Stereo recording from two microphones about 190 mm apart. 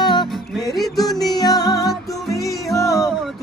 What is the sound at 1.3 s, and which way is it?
Music, 20° left (ahead or behind).